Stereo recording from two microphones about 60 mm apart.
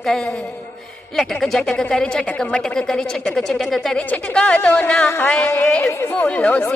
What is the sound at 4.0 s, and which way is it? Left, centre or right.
Music, left.